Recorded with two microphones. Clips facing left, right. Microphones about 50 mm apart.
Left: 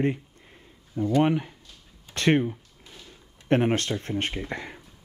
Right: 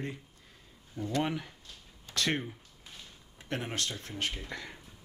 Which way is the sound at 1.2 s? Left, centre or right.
Left.